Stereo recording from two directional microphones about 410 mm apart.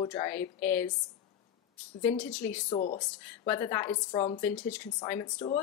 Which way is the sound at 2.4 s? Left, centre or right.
Centre.